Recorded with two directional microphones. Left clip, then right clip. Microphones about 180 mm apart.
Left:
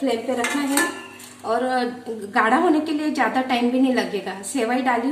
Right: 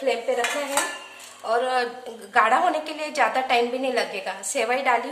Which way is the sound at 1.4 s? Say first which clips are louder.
Left 1 dB; 25° right (ahead or behind).